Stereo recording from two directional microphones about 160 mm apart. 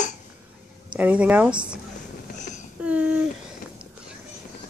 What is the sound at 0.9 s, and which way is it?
Speech, 10° right (ahead or behind).